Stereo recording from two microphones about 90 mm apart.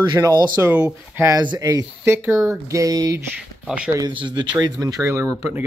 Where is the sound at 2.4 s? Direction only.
35° right (ahead or behind).